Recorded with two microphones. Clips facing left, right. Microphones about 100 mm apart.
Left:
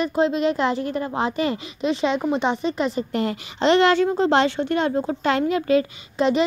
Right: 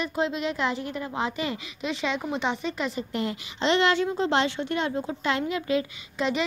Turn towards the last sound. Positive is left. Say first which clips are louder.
# left 7 dB
turn(degrees=40)  # may be behind; listen again after turning